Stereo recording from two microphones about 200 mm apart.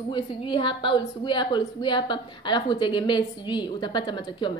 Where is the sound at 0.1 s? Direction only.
25° left (ahead or behind).